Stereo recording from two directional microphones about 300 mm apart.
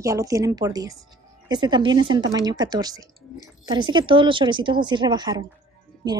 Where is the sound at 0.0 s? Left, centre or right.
Centre.